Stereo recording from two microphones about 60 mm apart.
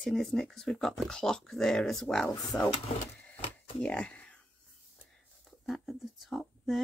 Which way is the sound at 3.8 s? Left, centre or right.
Left.